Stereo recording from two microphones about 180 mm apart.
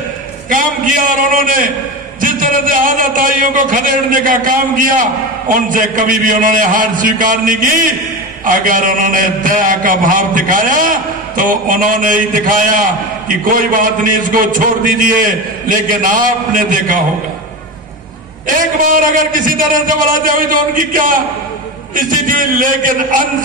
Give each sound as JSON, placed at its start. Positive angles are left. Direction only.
{"t": 0.5, "sound": "a man's voice", "side_deg": -50}
{"t": 18.5, "sound": "a man's voice", "side_deg": -50}